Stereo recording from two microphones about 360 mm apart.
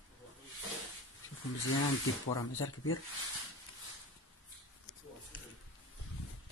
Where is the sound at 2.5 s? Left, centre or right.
Left.